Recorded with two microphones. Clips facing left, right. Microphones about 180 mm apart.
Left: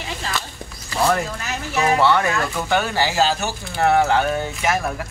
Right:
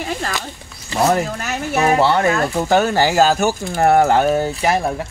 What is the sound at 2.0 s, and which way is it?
Speech, 35° right (ahead or behind).